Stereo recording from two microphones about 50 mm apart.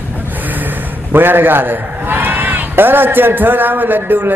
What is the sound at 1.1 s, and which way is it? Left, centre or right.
A man's voice, right.